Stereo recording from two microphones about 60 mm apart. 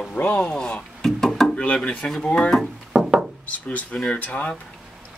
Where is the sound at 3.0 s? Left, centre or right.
Centre.